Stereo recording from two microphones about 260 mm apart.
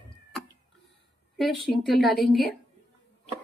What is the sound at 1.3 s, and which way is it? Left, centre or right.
Speech, centre.